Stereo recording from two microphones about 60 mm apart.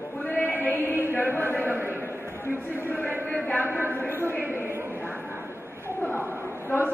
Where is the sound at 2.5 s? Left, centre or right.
Right.